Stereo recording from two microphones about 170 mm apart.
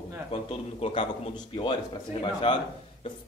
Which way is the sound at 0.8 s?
30° left (ahead or behind).